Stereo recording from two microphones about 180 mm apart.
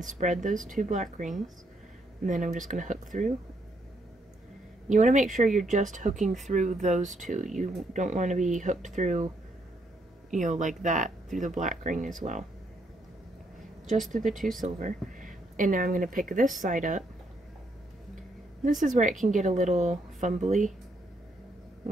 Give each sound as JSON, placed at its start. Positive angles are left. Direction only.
{"t": 0.0, "sound": "speech", "side_deg": -45}
{"t": 4.8, "sound": "speech", "side_deg": -45}
{"t": 10.3, "sound": "speech", "side_deg": -45}
{"t": 14.2, "sound": "speech", "side_deg": 0}
{"t": 14.6, "sound": "speech", "side_deg": -45}
{"t": 18.6, "sound": "a woman's voice", "side_deg": -45}